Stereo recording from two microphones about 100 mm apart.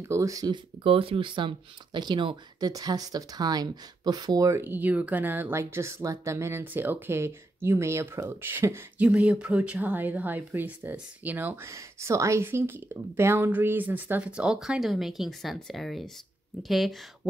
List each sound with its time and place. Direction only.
0.0 s speech: 30° right (ahead or behind)
0.8 s speech: 65° right (ahead or behind)
2.7 s speech: 40° right (ahead or behind)
4.5 s speech: 25° right (ahead or behind)
9.0 s speech: 10° right (ahead or behind)